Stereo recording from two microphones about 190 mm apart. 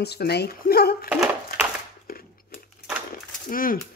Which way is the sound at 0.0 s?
60° left (ahead or behind).